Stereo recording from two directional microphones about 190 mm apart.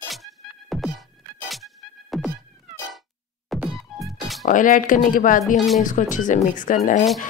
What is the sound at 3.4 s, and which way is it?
Music, centre (ahead or behind).